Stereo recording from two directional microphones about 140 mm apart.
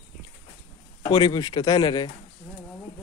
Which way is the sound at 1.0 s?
30° left (ahead or behind).